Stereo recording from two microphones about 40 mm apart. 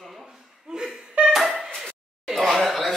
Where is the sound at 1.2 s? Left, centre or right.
Right.